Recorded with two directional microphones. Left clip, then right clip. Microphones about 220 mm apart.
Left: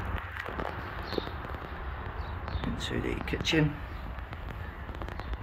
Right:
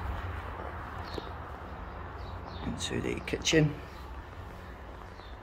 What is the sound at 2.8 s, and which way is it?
Speech, 10° right (ahead or behind).